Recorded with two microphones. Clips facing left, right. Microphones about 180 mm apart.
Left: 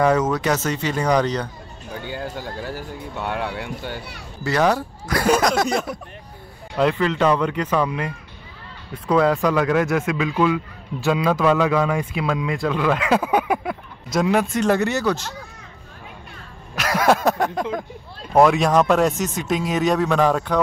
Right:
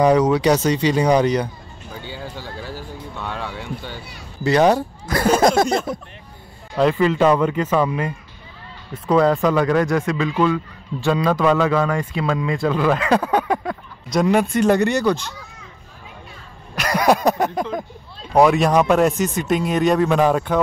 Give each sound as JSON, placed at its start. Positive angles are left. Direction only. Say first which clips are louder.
{"t": 0.0, "sound": "speech", "louder": "right 4 dB", "side_deg": -15}
{"t": 2.0, "sound": "speech", "louder": "left 3 dB", "side_deg": 15}
{"t": 4.5, "sound": "speech", "louder": "right 4 dB", "side_deg": -20}
{"t": 6.8, "sound": "speech", "louder": "right 3 dB", "side_deg": -5}
{"t": 16.7, "sound": "a sound", "louder": "right 1 dB", "side_deg": 0}
{"t": 18.3, "sound": "speech", "louder": "right 1 dB", "side_deg": 0}